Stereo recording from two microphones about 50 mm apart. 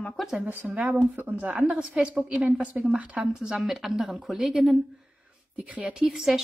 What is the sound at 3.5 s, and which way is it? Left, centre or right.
Speech, centre.